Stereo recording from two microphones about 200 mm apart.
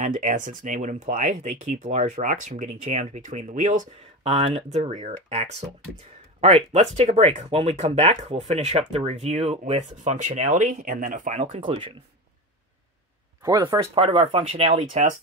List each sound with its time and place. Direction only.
0.0 s speech: 40° right (ahead or behind)
13.4 s speech: 20° right (ahead or behind)
14.7 s speech: 40° right (ahead or behind)